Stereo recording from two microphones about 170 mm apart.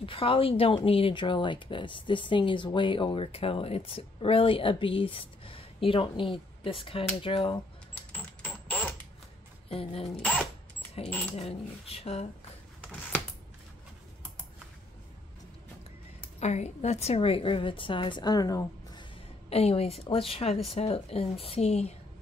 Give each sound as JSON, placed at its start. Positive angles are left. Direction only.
{"t": 0.0, "sound": "speech", "side_deg": 30}
{"t": 8.4, "sound": "a sound", "side_deg": 10}
{"t": 9.7, "sound": "speech", "side_deg": 35}
{"t": 10.2, "sound": "speech", "side_deg": 10}
{"t": 11.3, "sound": "speech", "side_deg": 35}
{"t": 16.3, "sound": "speech", "side_deg": 40}
{"t": 19.5, "sound": "speech", "side_deg": 35}